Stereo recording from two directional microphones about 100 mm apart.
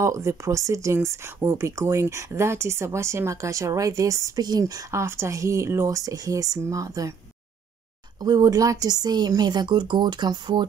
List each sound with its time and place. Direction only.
0.0 s speech: 30° right (ahead or behind)
8.2 s speech: 40° right (ahead or behind)